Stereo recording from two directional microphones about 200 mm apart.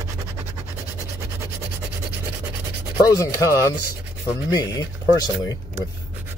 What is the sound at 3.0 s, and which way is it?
Rub, 15° left (ahead or behind).